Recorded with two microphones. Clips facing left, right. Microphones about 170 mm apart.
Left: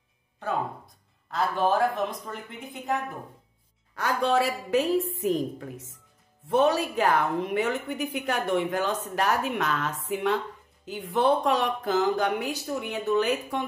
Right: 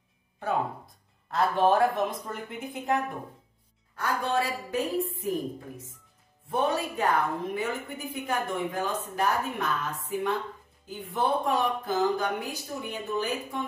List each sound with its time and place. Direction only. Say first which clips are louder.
1.3 s speech: right 2 dB; centre (ahead or behind)
3.9 s a woman's voice: left 4 dB; 90° left
10.9 s speech: left 5 dB; 75° left (ahead or behind)